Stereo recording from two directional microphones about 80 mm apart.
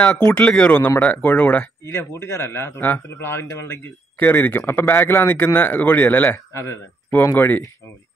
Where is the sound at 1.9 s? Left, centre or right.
Left.